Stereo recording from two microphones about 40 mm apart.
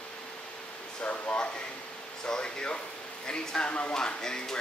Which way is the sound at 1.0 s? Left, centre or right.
Left.